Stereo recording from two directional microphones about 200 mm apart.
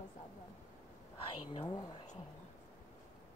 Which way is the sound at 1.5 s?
25° left (ahead or behind).